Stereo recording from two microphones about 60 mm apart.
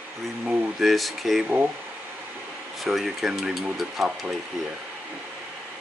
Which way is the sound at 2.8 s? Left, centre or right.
Centre.